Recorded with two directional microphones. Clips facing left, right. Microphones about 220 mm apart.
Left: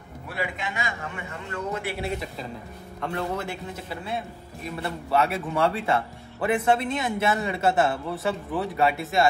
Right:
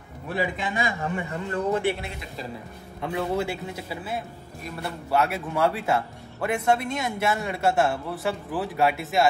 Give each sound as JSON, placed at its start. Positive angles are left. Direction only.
{"t": 0.4, "sound": "a man's voice", "side_deg": -35}
{"t": 3.0, "sound": "a man's voice", "side_deg": -5}